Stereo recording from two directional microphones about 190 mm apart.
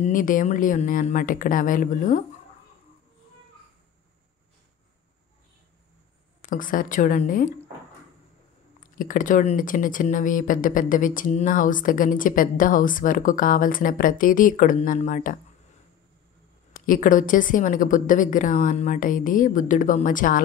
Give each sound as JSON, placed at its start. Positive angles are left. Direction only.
{"t": 0.0, "sound": "speech", "side_deg": 45}
{"t": 6.4, "sound": "speech", "side_deg": 45}
{"t": 8.9, "sound": "speech", "side_deg": 45}
{"t": 16.7, "sound": "speech", "side_deg": 45}